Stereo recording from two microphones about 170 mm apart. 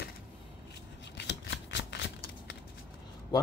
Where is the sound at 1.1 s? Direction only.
90° left.